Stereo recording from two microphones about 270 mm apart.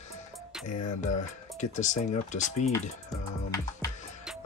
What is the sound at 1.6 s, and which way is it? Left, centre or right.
Speech, left.